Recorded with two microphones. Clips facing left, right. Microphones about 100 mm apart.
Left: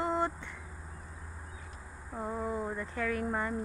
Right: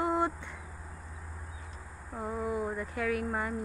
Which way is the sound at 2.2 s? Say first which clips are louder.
Right 1 dB; 5° right (ahead or behind).